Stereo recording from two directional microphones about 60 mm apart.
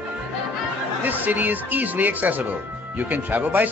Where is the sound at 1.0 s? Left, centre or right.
Right.